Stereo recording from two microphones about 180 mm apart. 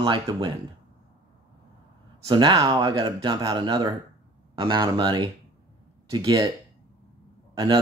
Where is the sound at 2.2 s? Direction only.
25° right (ahead or behind).